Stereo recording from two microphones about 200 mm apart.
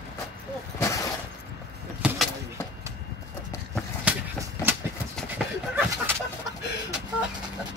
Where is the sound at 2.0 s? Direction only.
Centre (ahead or behind).